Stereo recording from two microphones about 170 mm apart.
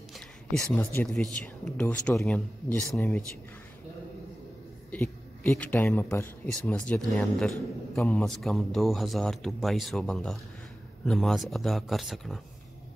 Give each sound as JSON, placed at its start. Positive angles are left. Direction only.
{"t": 0.7, "sound": "speech", "side_deg": 10}
{"t": 4.9, "sound": "speech", "side_deg": 15}